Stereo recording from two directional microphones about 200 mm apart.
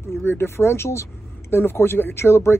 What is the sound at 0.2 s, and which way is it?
Speech, 10° left (ahead or behind).